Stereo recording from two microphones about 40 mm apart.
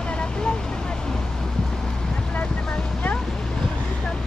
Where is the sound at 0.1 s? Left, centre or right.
Left.